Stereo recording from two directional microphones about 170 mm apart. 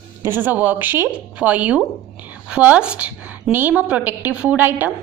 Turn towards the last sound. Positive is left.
turn(degrees=-10)  # may be behind; listen again after turning